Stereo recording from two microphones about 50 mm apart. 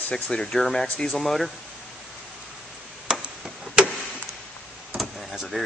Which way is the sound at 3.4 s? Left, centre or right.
Centre.